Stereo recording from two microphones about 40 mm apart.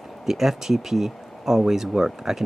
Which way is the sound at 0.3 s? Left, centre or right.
Centre.